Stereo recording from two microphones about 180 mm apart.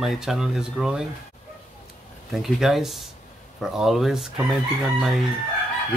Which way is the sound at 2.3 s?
Centre (ahead or behind).